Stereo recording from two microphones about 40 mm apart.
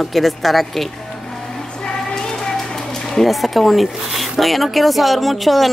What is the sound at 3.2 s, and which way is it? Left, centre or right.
Speech, centre.